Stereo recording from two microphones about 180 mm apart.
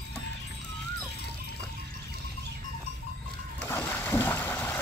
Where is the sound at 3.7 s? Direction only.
15° left (ahead or behind).